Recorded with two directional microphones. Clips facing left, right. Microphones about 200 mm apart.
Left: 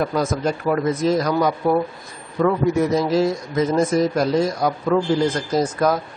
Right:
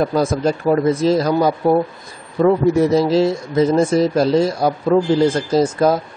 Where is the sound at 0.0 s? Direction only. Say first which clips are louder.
Right 4 dB; 30° right (ahead or behind).